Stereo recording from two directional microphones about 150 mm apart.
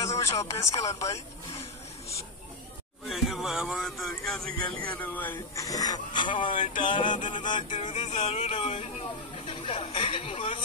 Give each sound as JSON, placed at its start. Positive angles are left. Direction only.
{"t": 0.2, "sound": "speech", "side_deg": 20}
{"t": 1.1, "sound": "speech", "side_deg": 45}
{"t": 3.1, "sound": "music", "side_deg": 0}
{"t": 5.0, "sound": "speech", "side_deg": 10}
{"t": 5.7, "sound": "speech", "side_deg": 25}
{"t": 8.0, "sound": "speech", "side_deg": 45}
{"t": 9.5, "sound": "speech", "side_deg": 35}